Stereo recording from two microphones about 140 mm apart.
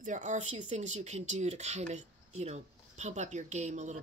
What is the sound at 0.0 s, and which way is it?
Speech, 60° right (ahead or behind).